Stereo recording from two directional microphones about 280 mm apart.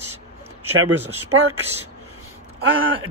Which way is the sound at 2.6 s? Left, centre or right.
Right.